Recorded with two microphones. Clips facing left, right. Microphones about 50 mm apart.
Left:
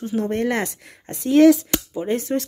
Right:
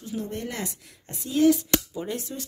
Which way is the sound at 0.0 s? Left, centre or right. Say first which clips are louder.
Left 10 dB; left.